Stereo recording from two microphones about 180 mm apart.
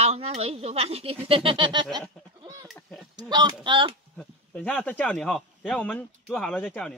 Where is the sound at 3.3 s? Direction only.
25° right (ahead or behind).